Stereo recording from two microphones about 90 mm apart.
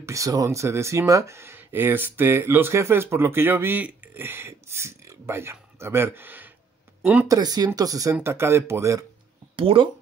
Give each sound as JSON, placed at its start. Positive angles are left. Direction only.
{"t": 0.0, "sound": "speech", "side_deg": -35}
{"t": 7.2, "sound": "speech", "side_deg": -45}
{"t": 8.1, "sound": "speech", "side_deg": -30}
{"t": 9.6, "sound": "speech", "side_deg": -90}